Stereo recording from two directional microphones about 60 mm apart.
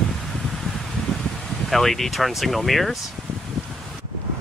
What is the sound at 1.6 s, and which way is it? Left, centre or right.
Speech, centre.